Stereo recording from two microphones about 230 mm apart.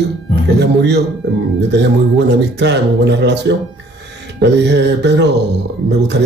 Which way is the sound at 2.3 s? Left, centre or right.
Right.